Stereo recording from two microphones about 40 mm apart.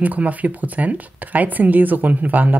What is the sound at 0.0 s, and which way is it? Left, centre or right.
Speech, right.